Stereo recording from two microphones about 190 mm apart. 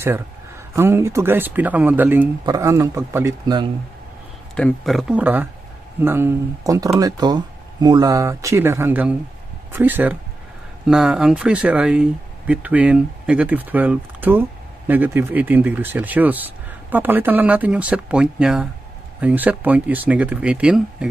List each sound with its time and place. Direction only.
0.7 s speech: 15° right (ahead or behind)
4.6 s speech: 5° left (ahead or behind)